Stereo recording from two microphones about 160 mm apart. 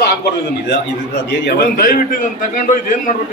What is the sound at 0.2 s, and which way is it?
A man's voice, 90° left.